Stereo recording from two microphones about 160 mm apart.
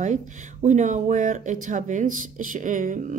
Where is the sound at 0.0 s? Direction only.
50° right (ahead or behind).